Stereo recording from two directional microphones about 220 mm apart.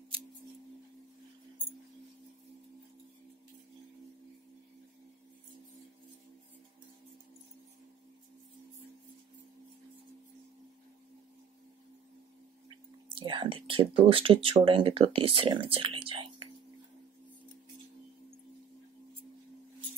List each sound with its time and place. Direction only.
13.1 s speech: 20° right (ahead or behind)